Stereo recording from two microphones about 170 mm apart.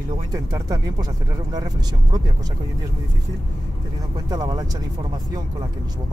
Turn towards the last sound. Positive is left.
turn(degrees=-20)  # may be behind; listen again after turning